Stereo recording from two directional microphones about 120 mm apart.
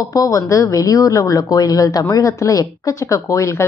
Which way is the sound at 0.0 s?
30° left (ahead or behind).